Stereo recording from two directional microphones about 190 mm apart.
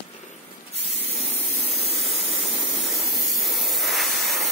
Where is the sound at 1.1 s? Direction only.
Centre (ahead or behind).